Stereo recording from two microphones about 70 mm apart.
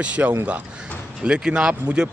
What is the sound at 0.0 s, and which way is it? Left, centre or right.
Speech, centre.